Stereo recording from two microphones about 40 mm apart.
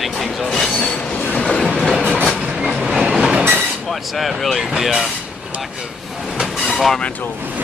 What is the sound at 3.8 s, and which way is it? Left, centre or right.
Speech, centre.